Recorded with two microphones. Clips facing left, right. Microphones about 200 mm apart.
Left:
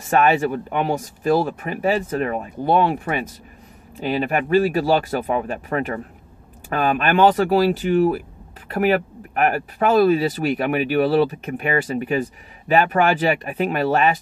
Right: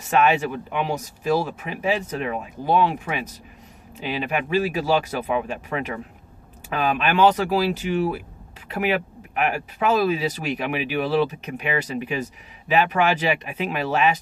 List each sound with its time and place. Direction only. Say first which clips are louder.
0.1 s speech: left 2 dB; 45° left (ahead or behind)